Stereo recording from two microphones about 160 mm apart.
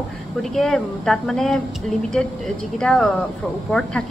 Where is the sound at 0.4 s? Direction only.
5° left (ahead or behind).